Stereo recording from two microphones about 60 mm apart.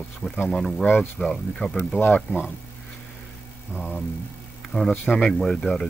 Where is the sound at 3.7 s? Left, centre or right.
Centre.